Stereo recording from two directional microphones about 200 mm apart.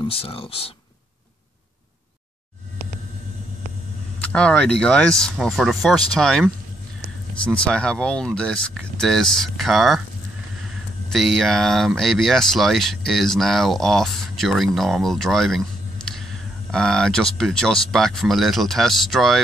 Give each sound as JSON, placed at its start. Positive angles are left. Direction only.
{"t": 0.0, "sound": "speech", "side_deg": 30}
{"t": 4.3, "sound": "speech", "side_deg": 5}
{"t": 16.7, "sound": "speech", "side_deg": 5}